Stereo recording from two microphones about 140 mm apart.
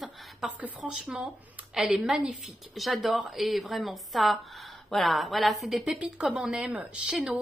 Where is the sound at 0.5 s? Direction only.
10° right (ahead or behind).